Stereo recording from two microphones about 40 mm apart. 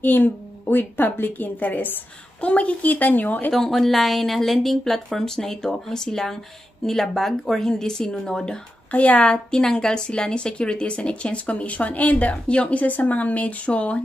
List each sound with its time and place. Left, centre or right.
0.0 s a woman's voice: left
2.4 s a woman's voice: left
3.5 s speech: centre
8.9 s speech: left
9.5 s speech: centre; by 14.0 s left